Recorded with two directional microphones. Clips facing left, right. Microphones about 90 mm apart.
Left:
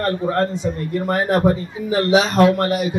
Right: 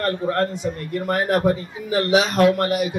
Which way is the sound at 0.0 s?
25° left (ahead or behind).